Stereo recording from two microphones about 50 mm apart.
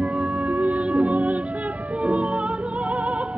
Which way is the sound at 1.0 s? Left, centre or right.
Right.